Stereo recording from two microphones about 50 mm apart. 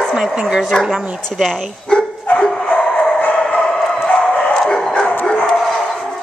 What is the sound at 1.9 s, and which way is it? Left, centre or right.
Dog, centre.